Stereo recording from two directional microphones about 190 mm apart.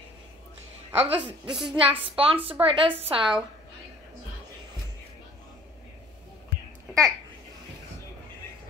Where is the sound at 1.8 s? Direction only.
30° right (ahead or behind).